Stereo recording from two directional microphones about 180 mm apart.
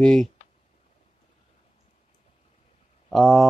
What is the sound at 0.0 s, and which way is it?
Speech, 5° left (ahead or behind).